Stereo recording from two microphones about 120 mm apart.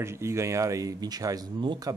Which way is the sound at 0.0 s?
20° right (ahead or behind).